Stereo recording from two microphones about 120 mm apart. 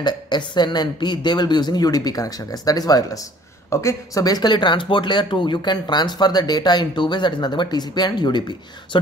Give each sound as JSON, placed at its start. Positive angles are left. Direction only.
{"t": 0.0, "sound": "speech", "side_deg": 40}